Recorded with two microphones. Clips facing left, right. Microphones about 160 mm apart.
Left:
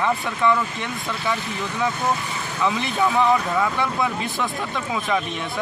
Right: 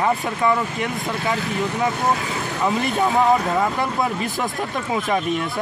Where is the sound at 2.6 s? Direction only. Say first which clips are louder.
Right 1 dB; 40° right (ahead or behind).